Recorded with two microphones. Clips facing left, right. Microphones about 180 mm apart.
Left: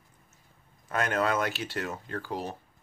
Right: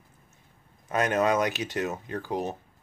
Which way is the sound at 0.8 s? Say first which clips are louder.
Right 4 dB; 20° right (ahead or behind).